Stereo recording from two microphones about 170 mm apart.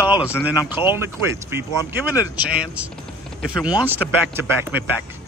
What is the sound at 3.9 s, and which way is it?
Speech, 10° right (ahead or behind).